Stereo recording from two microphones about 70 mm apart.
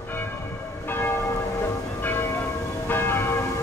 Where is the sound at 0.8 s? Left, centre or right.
Left.